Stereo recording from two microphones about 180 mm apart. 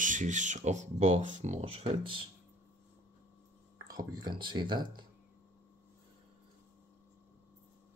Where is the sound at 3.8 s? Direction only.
20° right (ahead or behind).